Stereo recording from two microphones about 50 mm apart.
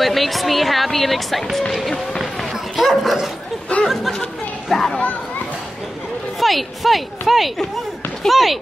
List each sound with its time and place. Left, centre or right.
0.0 s speech: centre
2.7 s dog: centre
3.7 s chatter: left
4.6 s children playing: centre
6.4 s speech: centre